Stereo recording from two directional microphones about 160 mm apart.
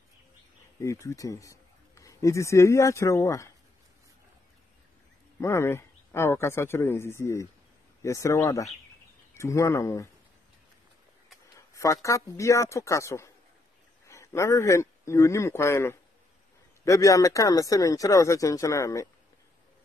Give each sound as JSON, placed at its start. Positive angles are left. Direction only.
{"t": 1.0, "sound": "speech", "side_deg": 20}
{"t": 5.4, "sound": "speech", "side_deg": 15}
{"t": 11.5, "sound": "a man's voice", "side_deg": 20}